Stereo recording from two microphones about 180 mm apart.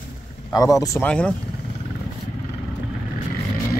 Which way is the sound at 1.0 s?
5° left (ahead or behind).